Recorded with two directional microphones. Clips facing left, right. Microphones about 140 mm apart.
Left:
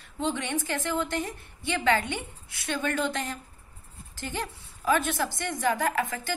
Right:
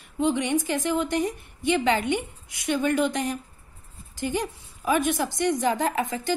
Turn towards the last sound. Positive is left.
turn(degrees=-20)  # may be behind; listen again after turning